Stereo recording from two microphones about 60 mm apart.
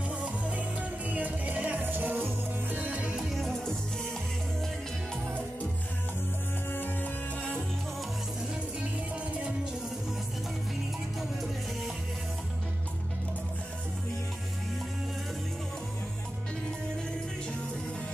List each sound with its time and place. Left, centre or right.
0.6 s music: right
2.8 s music: right
3.2 s music: centre
6.7 s music: left